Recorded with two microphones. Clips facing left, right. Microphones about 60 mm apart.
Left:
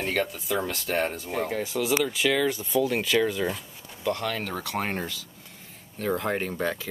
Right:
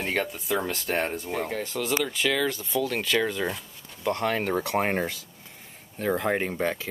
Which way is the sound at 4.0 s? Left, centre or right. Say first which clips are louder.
Right 2 dB; right.